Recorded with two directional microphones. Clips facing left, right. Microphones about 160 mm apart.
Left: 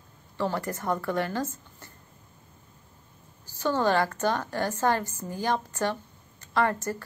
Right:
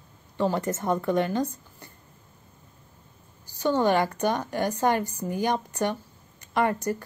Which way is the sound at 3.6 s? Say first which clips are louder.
Right 2 dB; 15° right (ahead or behind).